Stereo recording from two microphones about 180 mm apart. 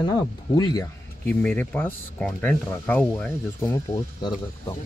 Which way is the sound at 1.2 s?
10° left (ahead or behind).